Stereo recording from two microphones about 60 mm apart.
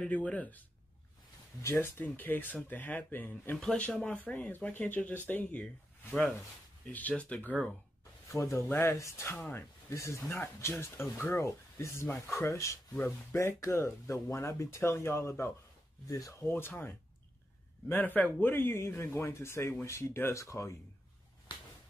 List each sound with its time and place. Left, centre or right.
0.1 s speech: left
1.6 s speech: left
3.7 s speech: centre
8.4 s speech: left
8.6 s speech: left
8.9 s speech: left
13.0 s speech: left
16.1 s speech: left
16.3 s speech: left
17.8 s speech: left
20.3 s speech: left